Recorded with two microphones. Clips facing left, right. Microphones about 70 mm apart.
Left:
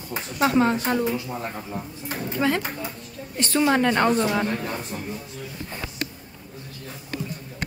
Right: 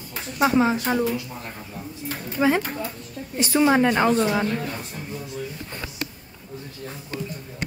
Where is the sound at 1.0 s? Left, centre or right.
Left.